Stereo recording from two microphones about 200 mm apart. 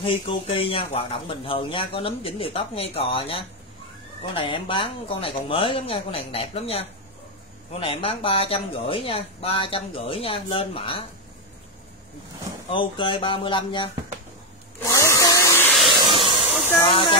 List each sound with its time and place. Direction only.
0.0 s speech: 25° left (ahead or behind)
12.7 s speech: 25° left (ahead or behind)
14.8 s vacuum cleaner: 15° left (ahead or behind)
15.9 s hiss: 25° right (ahead or behind)
16.9 s speech: 25° left (ahead or behind)